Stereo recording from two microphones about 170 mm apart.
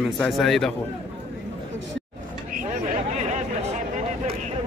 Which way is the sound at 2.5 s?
45° right (ahead or behind).